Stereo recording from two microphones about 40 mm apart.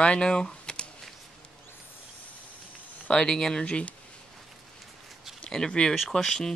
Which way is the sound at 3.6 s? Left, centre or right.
Left.